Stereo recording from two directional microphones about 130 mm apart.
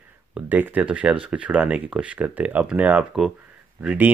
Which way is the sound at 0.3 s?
15° right (ahead or behind).